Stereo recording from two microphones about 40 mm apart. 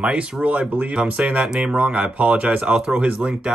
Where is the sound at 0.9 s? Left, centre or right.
Right.